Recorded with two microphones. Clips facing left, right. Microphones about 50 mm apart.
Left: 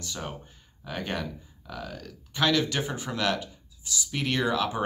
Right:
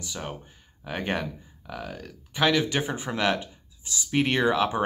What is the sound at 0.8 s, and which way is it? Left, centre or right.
Speech, right.